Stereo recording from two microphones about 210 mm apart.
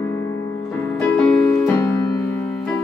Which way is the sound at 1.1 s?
10° left (ahead or behind).